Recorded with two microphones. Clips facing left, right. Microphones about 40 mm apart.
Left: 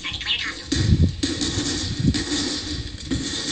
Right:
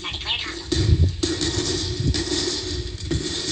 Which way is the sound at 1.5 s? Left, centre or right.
Left.